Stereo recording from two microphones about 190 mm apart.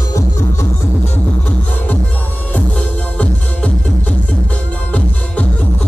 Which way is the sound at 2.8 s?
5° left (ahead or behind).